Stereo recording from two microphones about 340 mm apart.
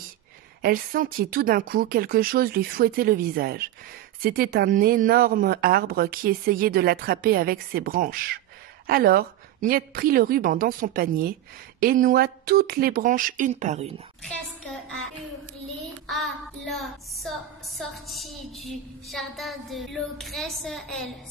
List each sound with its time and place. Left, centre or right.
0.6 s a woman's voice: right
14.2 s child singing: centre
16.1 s child singing: centre